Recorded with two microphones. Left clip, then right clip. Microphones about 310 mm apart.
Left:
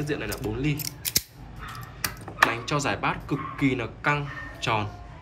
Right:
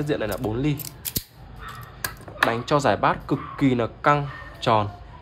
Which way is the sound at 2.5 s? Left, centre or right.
Right.